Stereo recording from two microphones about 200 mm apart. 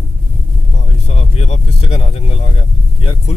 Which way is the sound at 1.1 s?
35° left (ahead or behind).